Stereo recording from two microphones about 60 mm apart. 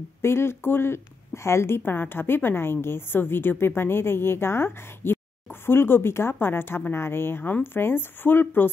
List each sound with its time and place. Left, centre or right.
0.2 s a woman's voice: left